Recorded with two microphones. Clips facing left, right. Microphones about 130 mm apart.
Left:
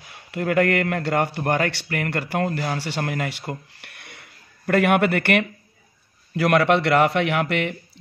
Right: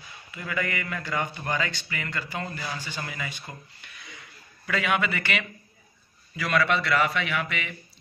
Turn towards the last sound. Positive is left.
turn(degrees=65)  # may be behind; listen again after turning